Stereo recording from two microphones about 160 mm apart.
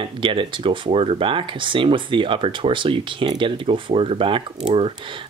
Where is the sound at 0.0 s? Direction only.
30° right (ahead or behind).